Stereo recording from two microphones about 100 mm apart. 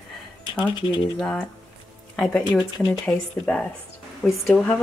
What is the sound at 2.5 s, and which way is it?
Speech, 45° left (ahead or behind).